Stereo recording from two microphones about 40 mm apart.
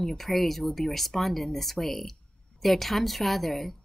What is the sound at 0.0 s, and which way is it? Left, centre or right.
Speech, centre.